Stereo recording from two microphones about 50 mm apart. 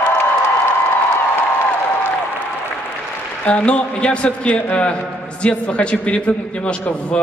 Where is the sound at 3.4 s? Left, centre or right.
Left.